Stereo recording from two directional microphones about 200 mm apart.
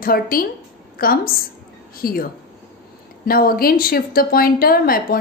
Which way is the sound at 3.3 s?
45° left (ahead or behind).